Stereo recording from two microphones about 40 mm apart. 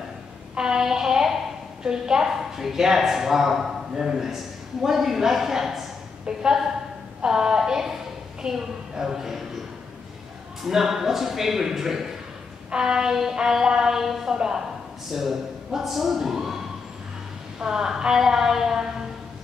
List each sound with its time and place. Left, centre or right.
0.6 s child singing: centre
1.8 s a man's voice: centre
2.2 s a man's voice: centre
10.6 s a man's voice: centre
17.6 s a man's voice: centre